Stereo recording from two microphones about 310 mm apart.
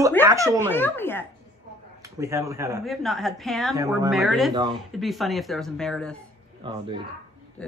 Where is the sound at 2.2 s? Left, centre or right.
Centre.